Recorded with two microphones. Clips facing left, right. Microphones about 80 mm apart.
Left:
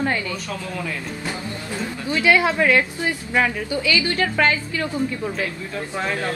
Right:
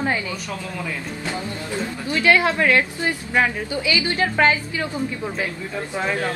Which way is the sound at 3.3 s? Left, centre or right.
Right.